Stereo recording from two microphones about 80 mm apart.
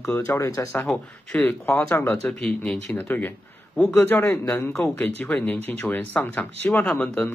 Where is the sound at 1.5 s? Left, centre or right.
Left.